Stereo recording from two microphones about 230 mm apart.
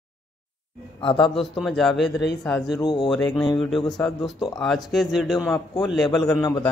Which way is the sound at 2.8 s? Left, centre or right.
Left.